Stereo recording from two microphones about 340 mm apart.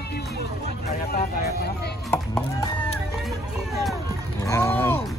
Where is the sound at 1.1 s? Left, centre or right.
Left.